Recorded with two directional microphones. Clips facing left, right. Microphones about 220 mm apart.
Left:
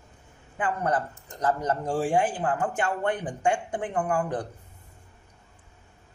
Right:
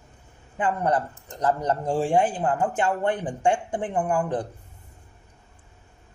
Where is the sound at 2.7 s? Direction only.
25° right (ahead or behind).